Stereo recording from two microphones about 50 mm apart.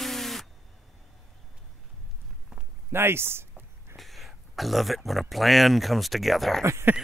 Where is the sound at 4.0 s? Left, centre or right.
Centre.